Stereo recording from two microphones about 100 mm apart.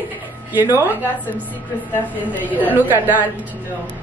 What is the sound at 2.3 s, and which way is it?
Speech, 15° left (ahead or behind).